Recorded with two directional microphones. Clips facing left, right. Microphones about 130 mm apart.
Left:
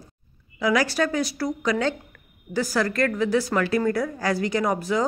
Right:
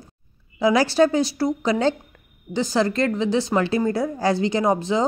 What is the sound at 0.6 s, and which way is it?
A woman's voice, 30° right (ahead or behind).